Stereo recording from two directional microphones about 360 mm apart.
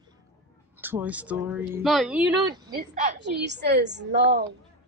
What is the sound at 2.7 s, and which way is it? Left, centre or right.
A woman's voice, right.